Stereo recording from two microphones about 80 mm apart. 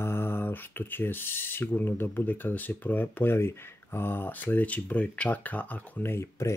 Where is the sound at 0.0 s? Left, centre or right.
Left.